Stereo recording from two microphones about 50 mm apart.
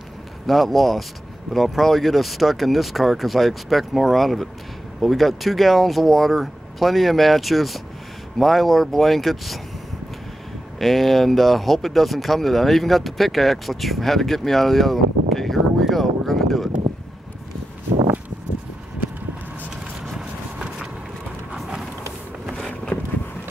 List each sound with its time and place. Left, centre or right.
0.5 s speech: centre
10.8 s speech: centre
15.8 s a sound: centre
19.7 s vehicle: centre
22.9 s vehicle: left